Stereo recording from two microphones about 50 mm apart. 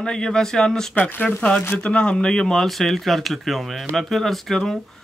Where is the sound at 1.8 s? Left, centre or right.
Left.